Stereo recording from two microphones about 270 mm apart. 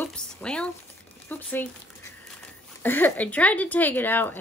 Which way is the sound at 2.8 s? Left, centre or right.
Centre.